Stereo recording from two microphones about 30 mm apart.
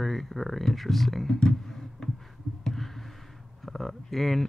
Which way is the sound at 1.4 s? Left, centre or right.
Centre.